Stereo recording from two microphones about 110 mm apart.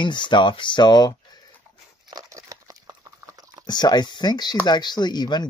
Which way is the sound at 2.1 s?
30° right (ahead or behind).